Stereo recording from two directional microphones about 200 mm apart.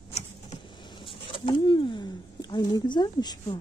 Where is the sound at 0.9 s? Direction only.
25° left (ahead or behind).